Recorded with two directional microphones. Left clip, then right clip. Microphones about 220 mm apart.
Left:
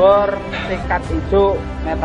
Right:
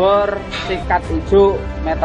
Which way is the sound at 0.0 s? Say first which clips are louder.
Left 2 dB; 50° right (ahead or behind).